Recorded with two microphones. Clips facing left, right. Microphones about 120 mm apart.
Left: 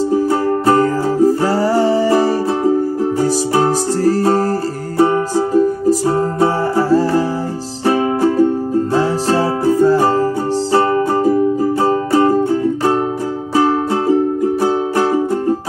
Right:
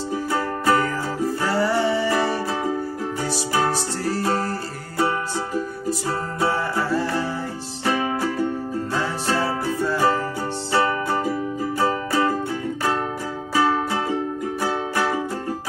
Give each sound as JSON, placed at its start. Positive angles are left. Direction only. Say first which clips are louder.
{"t": 0.1, "sound": "music", "louder": "left 10 dB", "side_deg": 35}